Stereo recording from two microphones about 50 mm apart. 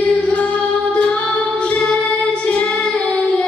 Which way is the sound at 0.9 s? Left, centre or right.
Left.